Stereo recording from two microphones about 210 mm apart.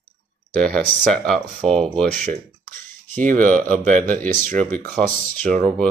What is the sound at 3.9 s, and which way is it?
Speech, 40° right (ahead or behind).